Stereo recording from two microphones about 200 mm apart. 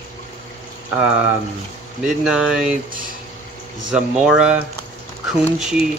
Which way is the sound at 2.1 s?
5° right (ahead or behind).